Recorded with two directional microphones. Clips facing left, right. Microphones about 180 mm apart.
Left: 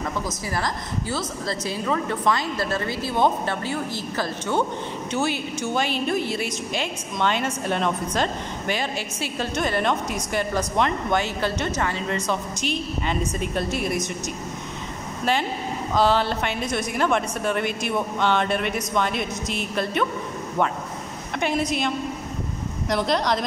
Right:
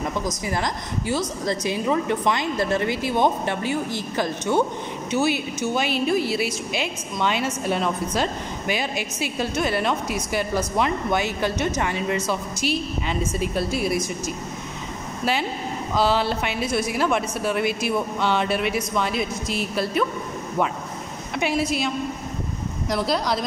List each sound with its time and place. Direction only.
0.5 s a woman's voice: 15° right (ahead or behind)
13.4 s a man's voice: 5° right (ahead or behind)
15.9 s a woman's voice: 10° right (ahead or behind)
21.4 s a man's voice: 5° right (ahead or behind)